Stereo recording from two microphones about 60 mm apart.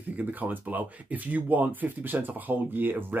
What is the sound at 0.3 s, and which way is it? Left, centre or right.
Speech, right.